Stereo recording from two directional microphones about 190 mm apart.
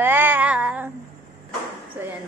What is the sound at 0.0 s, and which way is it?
Child singing, 10° right (ahead or behind).